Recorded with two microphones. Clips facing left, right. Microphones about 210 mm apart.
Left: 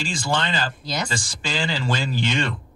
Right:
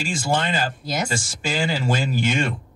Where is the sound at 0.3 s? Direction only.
45° right (ahead or behind).